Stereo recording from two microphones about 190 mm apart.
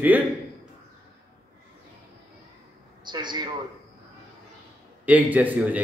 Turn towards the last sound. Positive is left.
turn(degrees=-10)  # may be behind; listen again after turning